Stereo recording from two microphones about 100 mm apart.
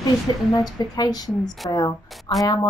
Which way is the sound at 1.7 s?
50° left (ahead or behind).